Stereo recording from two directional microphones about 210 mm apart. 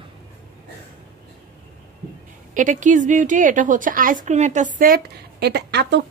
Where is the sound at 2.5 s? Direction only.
35° right (ahead or behind).